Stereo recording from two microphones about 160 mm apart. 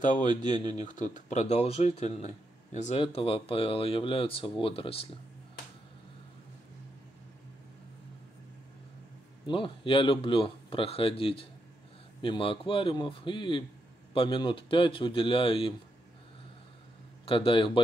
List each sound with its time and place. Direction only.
0.0 s speech: 50° left (ahead or behind)
3.0 s speech: 35° left (ahead or behind)
9.5 s speech: 30° left (ahead or behind)
17.3 s speech: 35° left (ahead or behind)